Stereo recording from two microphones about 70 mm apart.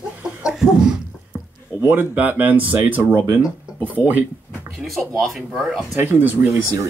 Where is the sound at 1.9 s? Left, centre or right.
Right.